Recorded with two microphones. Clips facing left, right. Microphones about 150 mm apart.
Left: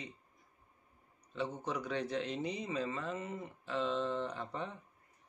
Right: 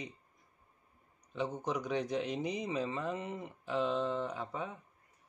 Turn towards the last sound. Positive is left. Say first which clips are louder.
# right 2 dB
turn(degrees=-10)  # may be behind; listen again after turning